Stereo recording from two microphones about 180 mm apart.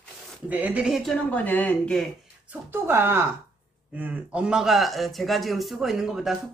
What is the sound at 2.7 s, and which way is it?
Speech, 10° right (ahead or behind).